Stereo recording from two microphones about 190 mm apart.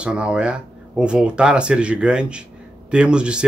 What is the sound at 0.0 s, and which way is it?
Speech, 5° right (ahead or behind).